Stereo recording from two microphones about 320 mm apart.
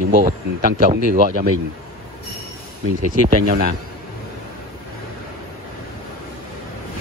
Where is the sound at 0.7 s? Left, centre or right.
Right.